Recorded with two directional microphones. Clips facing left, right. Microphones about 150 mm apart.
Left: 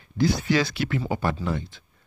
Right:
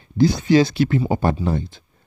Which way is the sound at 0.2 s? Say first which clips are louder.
Right 7 dB; 30° right (ahead or behind).